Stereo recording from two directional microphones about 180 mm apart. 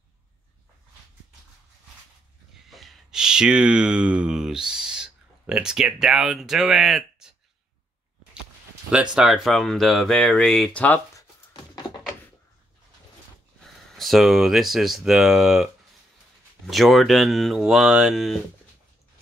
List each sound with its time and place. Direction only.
2.7 s speech: centre (ahead or behind)
9.1 s speech: centre (ahead or behind)
11.1 s a sound: 25° left (ahead or behind)
13.9 s speech: centre (ahead or behind)